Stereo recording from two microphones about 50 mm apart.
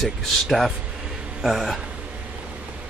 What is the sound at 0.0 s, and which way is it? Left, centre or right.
Speech, centre.